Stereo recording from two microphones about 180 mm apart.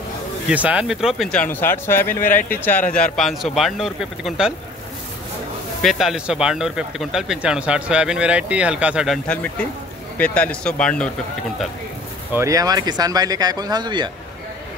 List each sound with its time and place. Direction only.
0.5 s speech: 5° right (ahead or behind)
5.8 s speech: centre (ahead or behind)
12.4 s speech: 20° right (ahead or behind)